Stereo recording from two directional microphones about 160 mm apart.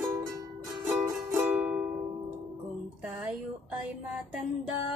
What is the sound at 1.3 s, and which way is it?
Music, 10° right (ahead or behind).